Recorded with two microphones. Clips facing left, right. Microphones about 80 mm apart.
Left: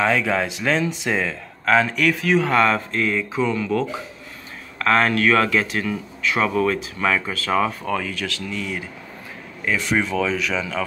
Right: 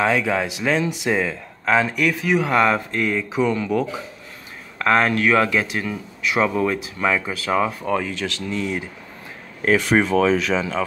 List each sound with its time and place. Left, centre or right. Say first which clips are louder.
0.0 s speech: even; centre
9.7 s speech: right 5 dB; right
9.9 s speech: right 4 dB; right